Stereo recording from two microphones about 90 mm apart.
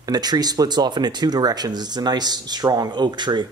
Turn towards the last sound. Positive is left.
turn(degrees=-55)  # may be behind; listen again after turning